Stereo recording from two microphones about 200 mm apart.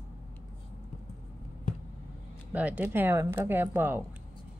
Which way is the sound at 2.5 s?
5° right (ahead or behind).